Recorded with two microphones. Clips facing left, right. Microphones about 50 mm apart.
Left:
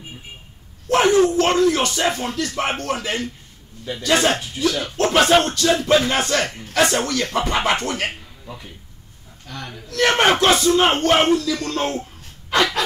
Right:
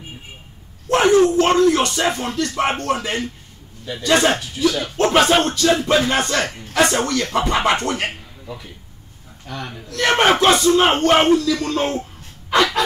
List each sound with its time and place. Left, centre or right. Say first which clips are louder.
0.8 s a sound: right 1 dB; centre
1.3 s speech: right 2 dB; centre
9.5 s a man's voice: right 3 dB; centre
9.8 s speech: right 1 dB; centre